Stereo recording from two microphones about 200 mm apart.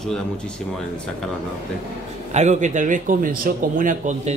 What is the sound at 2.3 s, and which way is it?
A man's voice, 35° right (ahead or behind).